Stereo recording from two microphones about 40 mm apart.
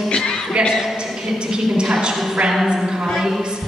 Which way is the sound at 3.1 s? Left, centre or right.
Centre.